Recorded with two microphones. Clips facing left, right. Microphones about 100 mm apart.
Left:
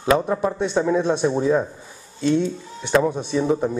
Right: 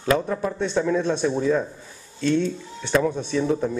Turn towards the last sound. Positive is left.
turn(degrees=25)  # may be behind; listen again after turning